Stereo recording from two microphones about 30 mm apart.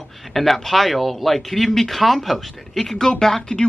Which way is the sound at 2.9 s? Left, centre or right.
Centre.